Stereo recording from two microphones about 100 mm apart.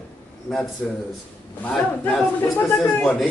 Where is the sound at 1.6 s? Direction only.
10° left (ahead or behind).